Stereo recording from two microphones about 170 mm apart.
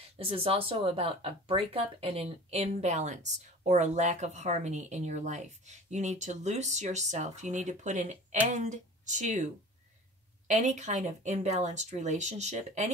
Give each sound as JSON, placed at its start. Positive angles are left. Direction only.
{"t": 0.2, "sound": "speech", "side_deg": -35}
{"t": 10.5, "sound": "speech", "side_deg": -45}